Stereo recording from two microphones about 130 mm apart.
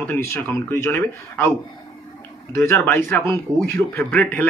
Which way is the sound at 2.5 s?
20° left (ahead or behind).